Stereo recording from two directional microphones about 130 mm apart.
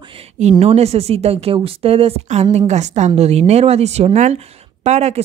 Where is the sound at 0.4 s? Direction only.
55° right (ahead or behind).